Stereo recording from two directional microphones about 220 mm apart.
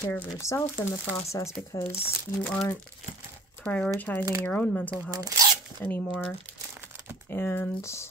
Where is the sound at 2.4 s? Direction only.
10° left (ahead or behind).